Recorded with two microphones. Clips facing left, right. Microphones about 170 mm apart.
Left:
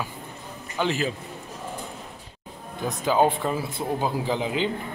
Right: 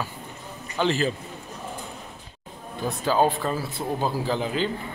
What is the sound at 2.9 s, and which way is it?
Speech, 15° left (ahead or behind).